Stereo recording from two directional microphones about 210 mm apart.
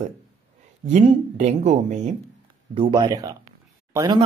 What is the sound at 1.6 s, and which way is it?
Speech, 35° right (ahead or behind).